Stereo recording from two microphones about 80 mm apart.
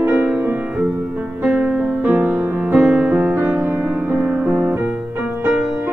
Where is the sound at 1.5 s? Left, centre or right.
Centre.